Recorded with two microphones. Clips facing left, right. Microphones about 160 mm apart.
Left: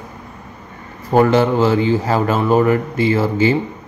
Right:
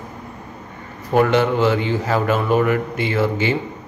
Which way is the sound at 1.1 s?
30° left (ahead or behind).